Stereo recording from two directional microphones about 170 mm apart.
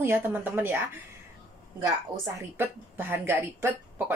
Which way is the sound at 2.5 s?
10° right (ahead or behind).